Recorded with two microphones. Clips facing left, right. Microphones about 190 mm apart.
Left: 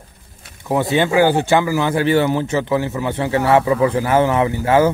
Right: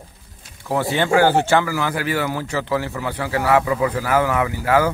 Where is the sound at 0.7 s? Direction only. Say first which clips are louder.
Left 3 dB; 20° left (ahead or behind).